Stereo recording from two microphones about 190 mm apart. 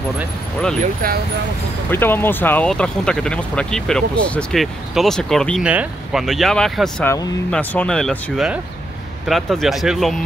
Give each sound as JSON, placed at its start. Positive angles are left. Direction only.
{"t": 1.0, "sound": "speech", "side_deg": -50}
{"t": 1.9, "sound": "speech", "side_deg": 10}